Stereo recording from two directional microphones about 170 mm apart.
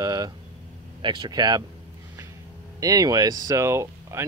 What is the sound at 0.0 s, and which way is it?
Speech, 20° right (ahead or behind).